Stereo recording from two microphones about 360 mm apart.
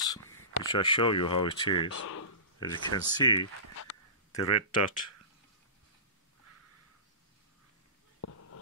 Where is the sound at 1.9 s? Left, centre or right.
Left.